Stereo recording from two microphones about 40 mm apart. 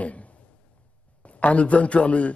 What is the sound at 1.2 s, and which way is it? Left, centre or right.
A man's voice, left.